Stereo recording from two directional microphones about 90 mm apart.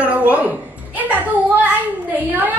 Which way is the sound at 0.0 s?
15° right (ahead or behind).